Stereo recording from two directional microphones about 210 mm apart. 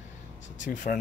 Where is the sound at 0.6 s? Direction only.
35° left (ahead or behind).